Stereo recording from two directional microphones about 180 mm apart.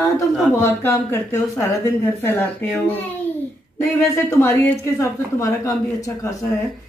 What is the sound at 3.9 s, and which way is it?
Speech, 15° left (ahead or behind).